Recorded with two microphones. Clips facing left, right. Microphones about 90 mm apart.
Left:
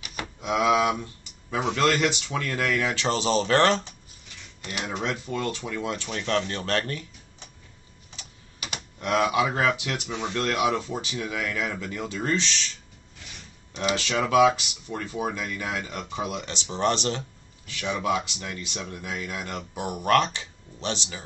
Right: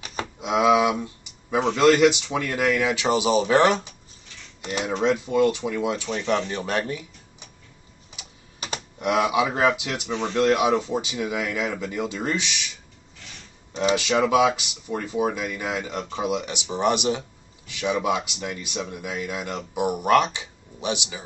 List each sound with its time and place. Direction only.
0.0 s a sound: 35° right (ahead or behind)
0.4 s speech: 20° right (ahead or behind)
4.6 s cutlery: 25° right (ahead or behind)
5.0 s speech: 20° right (ahead or behind)
9.0 s speech: 15° right (ahead or behind)
13.9 s speech: 20° right (ahead or behind)